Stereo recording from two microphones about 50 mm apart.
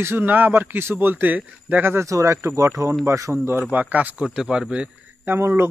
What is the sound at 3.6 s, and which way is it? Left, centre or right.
Speech, right.